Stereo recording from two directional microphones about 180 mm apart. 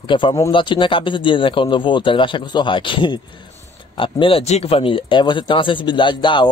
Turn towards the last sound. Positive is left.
turn(degrees=25)  # may be behind; listen again after turning